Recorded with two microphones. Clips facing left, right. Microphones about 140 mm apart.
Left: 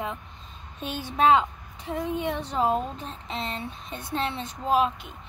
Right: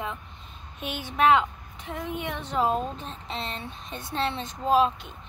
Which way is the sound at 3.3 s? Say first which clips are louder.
Left 2 dB; 25° right (ahead or behind).